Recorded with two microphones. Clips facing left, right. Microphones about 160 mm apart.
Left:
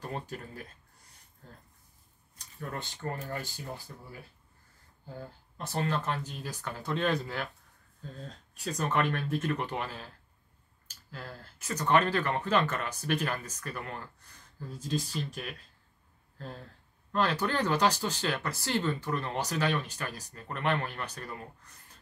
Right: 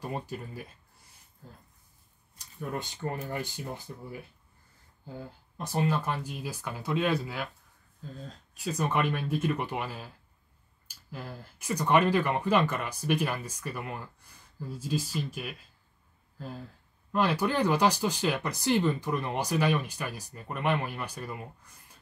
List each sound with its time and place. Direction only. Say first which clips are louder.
0.0 s speech: right 2 dB; 10° right (ahead or behind)
5.6 s speech: right 3 dB; 10° right (ahead or behind)